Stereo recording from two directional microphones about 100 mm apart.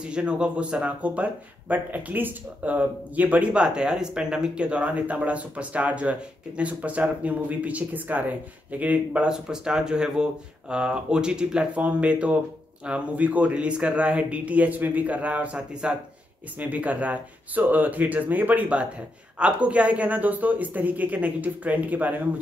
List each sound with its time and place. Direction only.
0.0 s speech: 10° right (ahead or behind)